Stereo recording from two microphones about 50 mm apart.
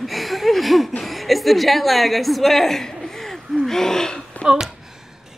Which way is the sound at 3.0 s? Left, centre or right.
Centre.